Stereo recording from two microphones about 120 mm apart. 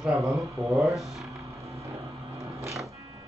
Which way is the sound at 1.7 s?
25° right (ahead or behind).